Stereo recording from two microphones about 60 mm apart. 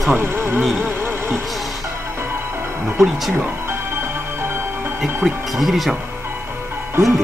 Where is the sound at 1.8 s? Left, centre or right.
Right.